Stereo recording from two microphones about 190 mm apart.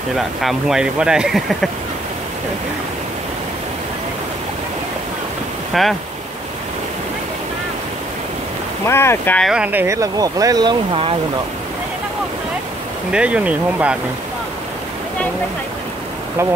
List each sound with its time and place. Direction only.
0.1 s speech: centre (ahead or behind)
5.7 s speech: centre (ahead or behind)
8.8 s speech: 15° left (ahead or behind)
9.5 s speech: 10° right (ahead or behind); by 11.1 s 25° right (ahead or behind)
13.1 s speech: 5° right (ahead or behind)